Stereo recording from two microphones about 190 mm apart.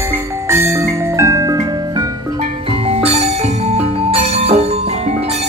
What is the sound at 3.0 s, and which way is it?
Music, 30° right (ahead or behind).